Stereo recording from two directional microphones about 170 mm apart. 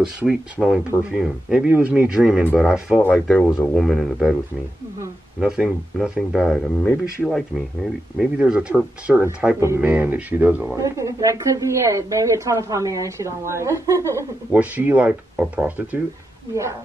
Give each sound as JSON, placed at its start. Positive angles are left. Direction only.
{"t": 0.0, "sound": "speech", "side_deg": -5}
{"t": 3.0, "sound": "speech", "side_deg": 5}
{"t": 5.4, "sound": "speech", "side_deg": -5}
{"t": 10.8, "sound": "speech", "side_deg": -20}